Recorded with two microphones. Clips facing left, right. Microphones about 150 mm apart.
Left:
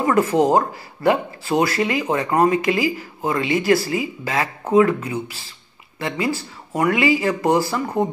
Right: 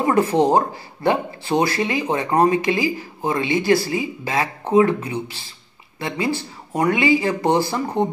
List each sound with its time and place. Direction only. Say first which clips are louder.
0.0 s speech: even; 30° right (ahead or behind)